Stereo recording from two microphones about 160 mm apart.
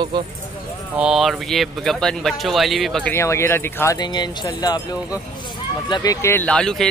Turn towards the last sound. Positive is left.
turn(degrees=5)  # may be behind; listen again after turning